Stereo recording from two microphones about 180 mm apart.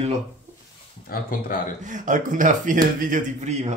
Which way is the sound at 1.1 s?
50° left (ahead or behind).